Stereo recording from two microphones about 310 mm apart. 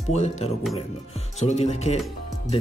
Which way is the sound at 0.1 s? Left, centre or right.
Left.